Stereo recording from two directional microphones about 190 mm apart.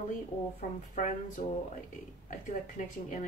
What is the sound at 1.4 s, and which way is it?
A woman's voice, 45° left (ahead or behind).